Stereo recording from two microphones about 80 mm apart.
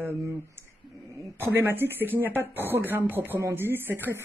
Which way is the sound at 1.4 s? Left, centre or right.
Right.